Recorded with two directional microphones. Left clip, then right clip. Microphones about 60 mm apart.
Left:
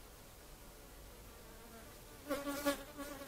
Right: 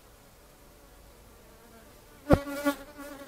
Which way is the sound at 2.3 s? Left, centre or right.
Centre.